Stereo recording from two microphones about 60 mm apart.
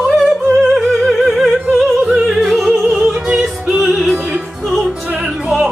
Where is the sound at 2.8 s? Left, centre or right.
Centre.